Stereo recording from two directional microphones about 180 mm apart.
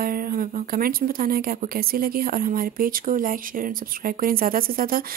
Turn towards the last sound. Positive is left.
turn(degrees=-50)  # may be behind; listen again after turning